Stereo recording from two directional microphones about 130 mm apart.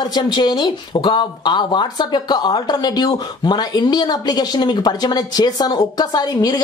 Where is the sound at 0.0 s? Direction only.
35° left (ahead or behind).